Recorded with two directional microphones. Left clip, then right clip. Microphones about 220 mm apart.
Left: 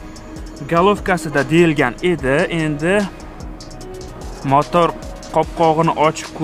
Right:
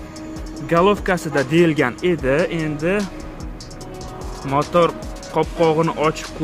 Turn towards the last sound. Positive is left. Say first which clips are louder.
# left 4 dB
turn(degrees=20)  # may be behind; listen again after turning